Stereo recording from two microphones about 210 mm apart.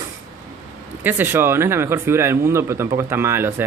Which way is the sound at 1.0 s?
10° right (ahead or behind).